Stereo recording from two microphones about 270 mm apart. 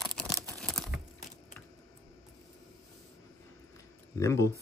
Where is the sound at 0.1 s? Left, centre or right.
Centre.